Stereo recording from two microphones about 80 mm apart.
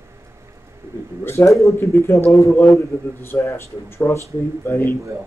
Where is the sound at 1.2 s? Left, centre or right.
Left.